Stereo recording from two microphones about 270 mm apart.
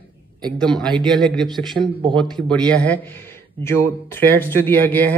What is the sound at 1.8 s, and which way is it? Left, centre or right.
Speech, centre.